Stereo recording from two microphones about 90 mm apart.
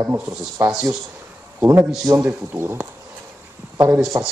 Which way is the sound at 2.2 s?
25° right (ahead or behind).